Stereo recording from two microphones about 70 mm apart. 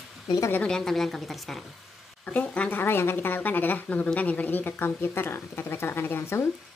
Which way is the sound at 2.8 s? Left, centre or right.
Left.